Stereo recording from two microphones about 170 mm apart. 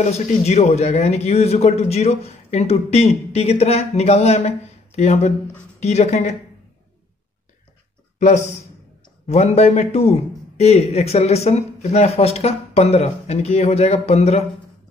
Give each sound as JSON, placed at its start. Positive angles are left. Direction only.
{"t": 0.0, "sound": "a man's voice", "side_deg": 40}
{"t": 8.2, "sound": "a man's voice", "side_deg": 45}